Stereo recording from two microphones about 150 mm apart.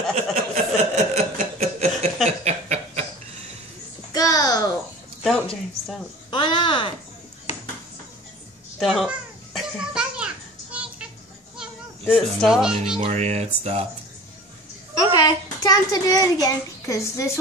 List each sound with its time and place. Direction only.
0.1 s a sound: 50° right (ahead or behind)
2.4 s chuckle: 50° right (ahead or behind)
4.1 s babbling: 25° left (ahead or behind)
5.2 s a sound: centre (ahead or behind)
6.3 s a sound: 35° left (ahead or behind)
8.7 s children playing: centre (ahead or behind)
12.4 s speech: centre (ahead or behind)
12.9 s speech: 45° right (ahead or behind)
15.0 s a child's voice: 25° left (ahead or behind)